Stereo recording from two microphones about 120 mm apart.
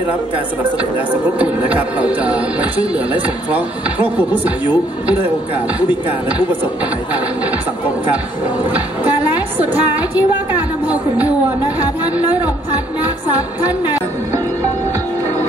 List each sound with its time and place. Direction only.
1.4 s speech: 10° right (ahead or behind)
8.6 s a woman's voice: 15° right (ahead or behind)
13.0 s music: 15° right (ahead or behind)